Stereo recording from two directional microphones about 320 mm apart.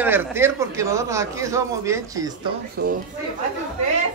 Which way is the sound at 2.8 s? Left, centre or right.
Right.